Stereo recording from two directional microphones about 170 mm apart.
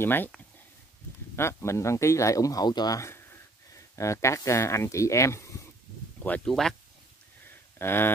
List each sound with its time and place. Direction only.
0.0 s speech: 10° left (ahead or behind)
1.3 s speech: 15° left (ahead or behind)
6.2 s speech: 5° left (ahead or behind)
7.8 s speech: 15° left (ahead or behind)